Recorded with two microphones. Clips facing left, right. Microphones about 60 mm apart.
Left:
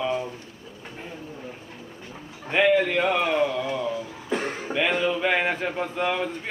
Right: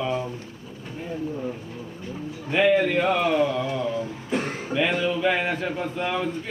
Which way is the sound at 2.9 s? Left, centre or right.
Left.